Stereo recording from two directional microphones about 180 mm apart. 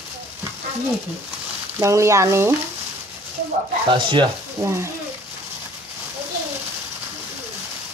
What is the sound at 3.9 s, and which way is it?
Speech, 25° right (ahead or behind).